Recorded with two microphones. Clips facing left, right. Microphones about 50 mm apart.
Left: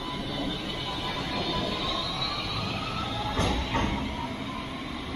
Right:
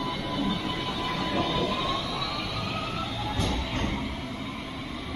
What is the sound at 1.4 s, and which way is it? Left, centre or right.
Train, right.